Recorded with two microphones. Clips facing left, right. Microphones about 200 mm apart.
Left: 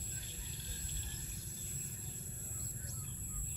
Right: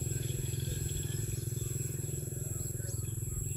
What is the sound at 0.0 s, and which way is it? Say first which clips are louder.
Vehicle: right 14 dB; 60° right (ahead or behind).